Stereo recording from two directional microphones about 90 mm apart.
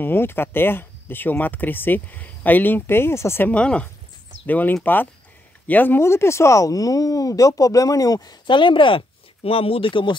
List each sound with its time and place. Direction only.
0.0 s speech: 25° left (ahead or behind)
3.5 s speech: 10° left (ahead or behind); by 8.4 s 45° left (ahead or behind)
8.5 s speech: 65° left (ahead or behind)